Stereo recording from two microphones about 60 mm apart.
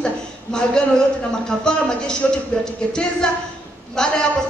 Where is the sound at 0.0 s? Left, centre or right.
Centre.